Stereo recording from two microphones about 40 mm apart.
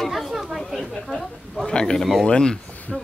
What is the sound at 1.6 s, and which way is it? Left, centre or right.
Speech, centre.